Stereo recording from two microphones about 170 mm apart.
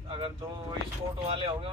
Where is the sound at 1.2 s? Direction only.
30° right (ahead or behind).